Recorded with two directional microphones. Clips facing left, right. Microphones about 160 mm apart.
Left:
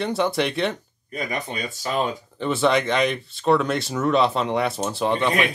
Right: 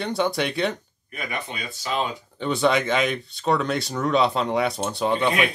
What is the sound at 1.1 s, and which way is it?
Speech, 45° left (ahead or behind).